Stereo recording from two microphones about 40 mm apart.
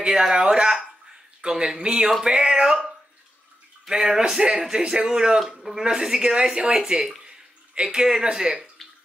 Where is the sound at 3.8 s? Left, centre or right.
Centre.